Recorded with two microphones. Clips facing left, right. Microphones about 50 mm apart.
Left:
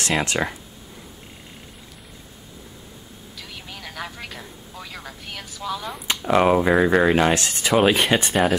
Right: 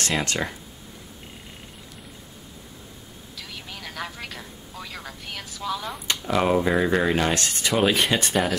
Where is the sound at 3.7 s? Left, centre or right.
Centre.